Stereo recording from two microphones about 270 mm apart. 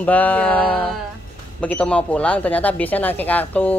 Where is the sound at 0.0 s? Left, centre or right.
Centre.